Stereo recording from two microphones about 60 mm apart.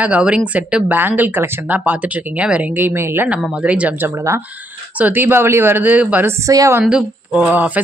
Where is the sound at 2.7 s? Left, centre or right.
Right.